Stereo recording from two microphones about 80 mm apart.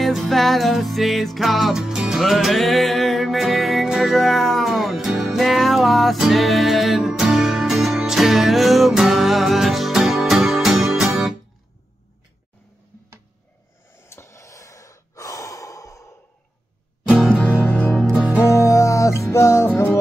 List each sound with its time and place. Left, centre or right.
0.0 s music: centre
13.9 s gasp: left
17.6 s music: left
18.1 s music: centre
18.4 s music: left